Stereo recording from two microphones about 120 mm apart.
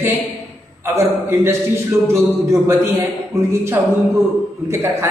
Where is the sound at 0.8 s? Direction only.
20° right (ahead or behind).